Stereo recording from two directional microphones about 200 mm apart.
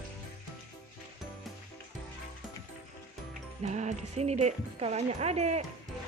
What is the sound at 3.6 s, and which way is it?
Speech, 35° right (ahead or behind).